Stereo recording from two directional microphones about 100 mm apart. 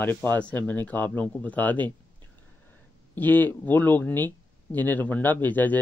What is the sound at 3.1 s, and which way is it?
Speech, 15° left (ahead or behind).